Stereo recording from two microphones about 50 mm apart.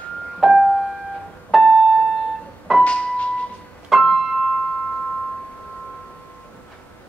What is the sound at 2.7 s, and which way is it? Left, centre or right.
Piano, centre.